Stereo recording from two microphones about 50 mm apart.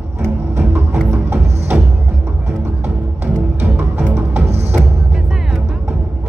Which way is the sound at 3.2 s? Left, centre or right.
Right.